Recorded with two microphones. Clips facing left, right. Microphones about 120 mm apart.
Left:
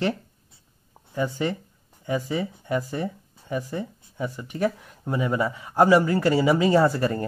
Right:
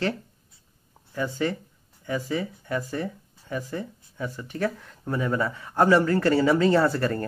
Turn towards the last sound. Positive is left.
turn(degrees=15)  # may be behind; listen again after turning